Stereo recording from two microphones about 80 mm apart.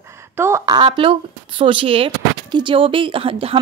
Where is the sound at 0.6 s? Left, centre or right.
Right.